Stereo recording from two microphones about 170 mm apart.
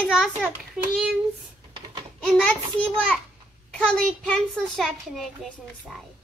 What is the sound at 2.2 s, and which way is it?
A child's voice, 5° left (ahead or behind).